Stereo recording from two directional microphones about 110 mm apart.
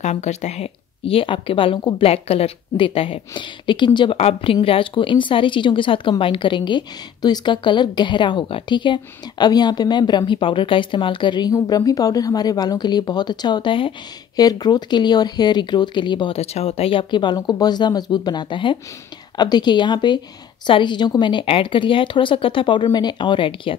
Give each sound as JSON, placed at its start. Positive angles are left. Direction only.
{"t": 0.0, "sound": "speech", "side_deg": 90}
{"t": 4.2, "sound": "a woman's voice", "side_deg": 60}
{"t": 14.3, "sound": "a woman's voice", "side_deg": 35}
{"t": 16.3, "sound": "speech", "side_deg": 70}
{"t": 17.1, "sound": "a woman's voice", "side_deg": 45}